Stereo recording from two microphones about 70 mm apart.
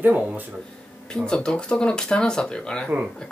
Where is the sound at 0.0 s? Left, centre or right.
Right.